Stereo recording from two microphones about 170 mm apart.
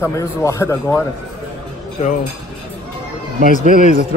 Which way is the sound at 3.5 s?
45° left (ahead or behind).